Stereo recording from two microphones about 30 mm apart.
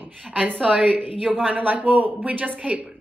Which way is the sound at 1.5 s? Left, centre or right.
Right.